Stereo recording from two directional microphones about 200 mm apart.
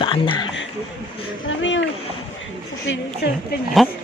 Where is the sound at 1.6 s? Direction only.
65° left (ahead or behind).